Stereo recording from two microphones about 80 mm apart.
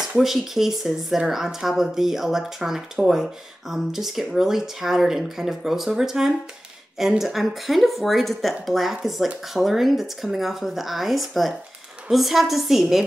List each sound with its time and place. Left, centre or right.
0.2 s speech: centre